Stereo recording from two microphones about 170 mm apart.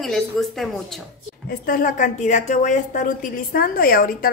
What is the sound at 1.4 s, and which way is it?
A woman's voice, 55° left (ahead or behind).